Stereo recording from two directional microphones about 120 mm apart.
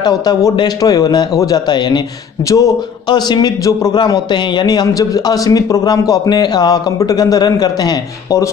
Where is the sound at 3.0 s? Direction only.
35° left (ahead or behind).